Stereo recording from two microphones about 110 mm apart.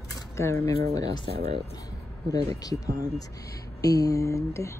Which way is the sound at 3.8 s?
35° left (ahead or behind).